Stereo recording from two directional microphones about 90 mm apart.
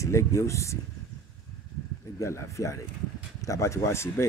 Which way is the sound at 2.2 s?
30° left (ahead or behind).